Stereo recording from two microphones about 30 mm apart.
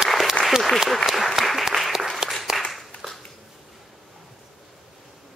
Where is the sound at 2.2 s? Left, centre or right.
Right.